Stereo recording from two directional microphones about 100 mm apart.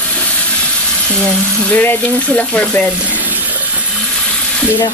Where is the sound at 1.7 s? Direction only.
15° left (ahead or behind).